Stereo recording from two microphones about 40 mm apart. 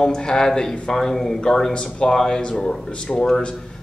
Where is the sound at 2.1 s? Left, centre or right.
Centre.